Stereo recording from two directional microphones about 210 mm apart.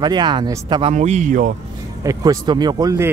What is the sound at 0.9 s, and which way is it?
Speech, 35° right (ahead or behind).